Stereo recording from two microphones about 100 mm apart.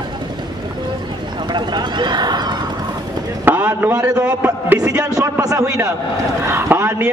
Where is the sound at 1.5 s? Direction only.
45° right (ahead or behind).